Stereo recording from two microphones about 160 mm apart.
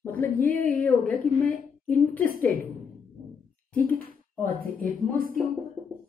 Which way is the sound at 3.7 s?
10° left (ahead or behind).